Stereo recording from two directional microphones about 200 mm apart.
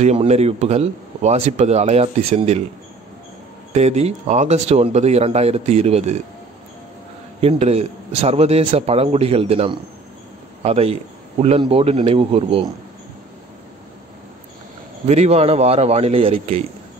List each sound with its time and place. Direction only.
0.0 s a man's voice: 35° right (ahead or behind)
3.7 s a man's voice: 30° right (ahead or behind)
7.3 s a man's voice: 30° right (ahead or behind)
15.0 s a man's voice: 35° right (ahead or behind)